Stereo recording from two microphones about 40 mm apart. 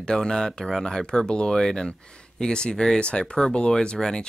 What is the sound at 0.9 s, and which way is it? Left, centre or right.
Speech, centre.